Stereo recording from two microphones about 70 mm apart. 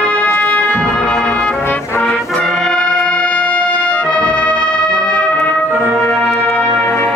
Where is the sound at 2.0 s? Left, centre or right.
Centre.